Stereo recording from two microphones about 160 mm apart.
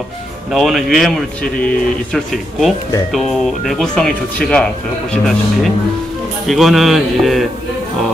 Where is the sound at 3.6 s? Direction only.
5° left (ahead or behind).